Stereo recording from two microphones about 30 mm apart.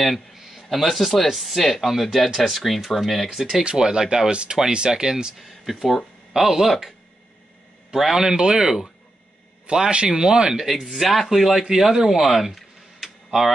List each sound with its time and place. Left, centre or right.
0.3 s a sound: centre
0.7 s speech: centre
1.6 s speech: centre
3.6 s speech: right
4.3 s speech: right
5.4 s speech: centre
7.9 s a man's voice: centre
9.7 s speech: right
11.0 s speech: centre
11.7 s speech: centre